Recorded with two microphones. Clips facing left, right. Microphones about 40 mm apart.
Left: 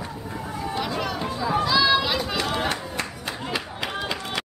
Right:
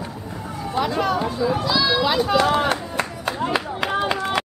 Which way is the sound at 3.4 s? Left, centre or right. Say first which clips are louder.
Right 7 dB; right.